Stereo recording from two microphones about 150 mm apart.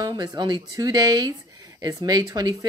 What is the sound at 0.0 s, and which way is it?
Speech, 25° right (ahead or behind).